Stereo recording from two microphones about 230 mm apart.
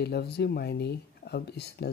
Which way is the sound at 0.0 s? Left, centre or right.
Left.